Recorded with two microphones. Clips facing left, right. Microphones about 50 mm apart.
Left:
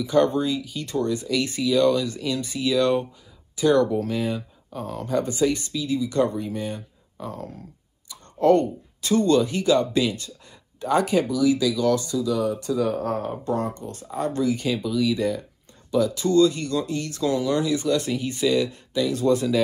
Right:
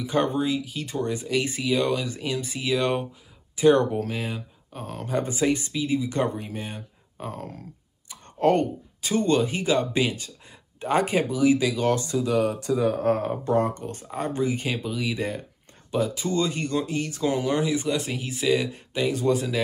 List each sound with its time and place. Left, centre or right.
0.0 s speech: right
1.0 s speech: right
4.1 s speech: centre
5.0 s speech: right
7.2 s speech: right
8.1 s clicking: right
9.0 s speech: right